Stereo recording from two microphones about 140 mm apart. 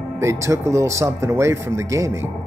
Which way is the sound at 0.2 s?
20° right (ahead or behind).